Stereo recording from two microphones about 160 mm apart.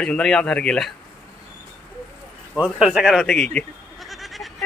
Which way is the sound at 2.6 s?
5° right (ahead or behind).